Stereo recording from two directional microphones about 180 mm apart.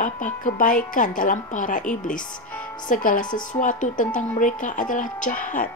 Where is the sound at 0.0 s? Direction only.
45° left (ahead or behind).